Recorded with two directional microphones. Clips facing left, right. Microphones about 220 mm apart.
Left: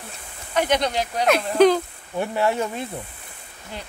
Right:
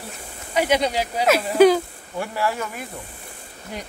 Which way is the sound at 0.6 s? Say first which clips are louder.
Right 1 dB; 10° right (ahead or behind).